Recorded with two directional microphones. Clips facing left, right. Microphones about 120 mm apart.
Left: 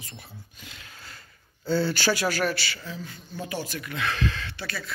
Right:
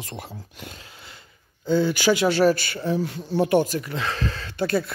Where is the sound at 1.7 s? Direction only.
15° right (ahead or behind).